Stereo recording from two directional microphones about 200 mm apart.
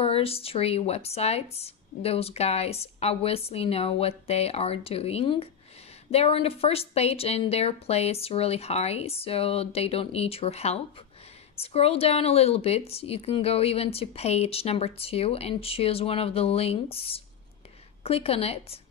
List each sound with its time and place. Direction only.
0.0 s speech: 30° left (ahead or behind)